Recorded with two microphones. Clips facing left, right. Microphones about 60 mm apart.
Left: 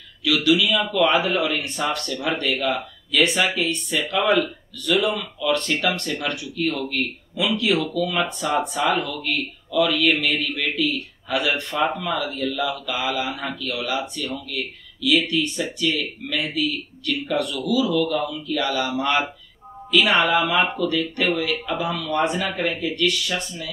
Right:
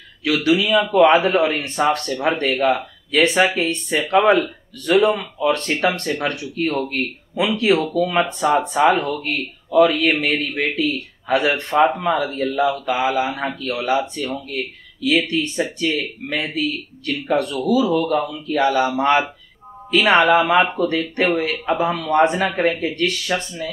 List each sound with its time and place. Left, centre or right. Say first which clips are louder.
0.2 s speech: right 2 dB; right